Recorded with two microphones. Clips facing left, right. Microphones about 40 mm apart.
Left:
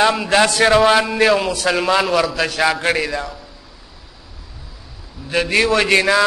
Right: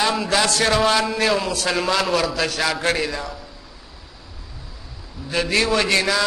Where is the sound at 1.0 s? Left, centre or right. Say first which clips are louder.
Left 5 dB; centre.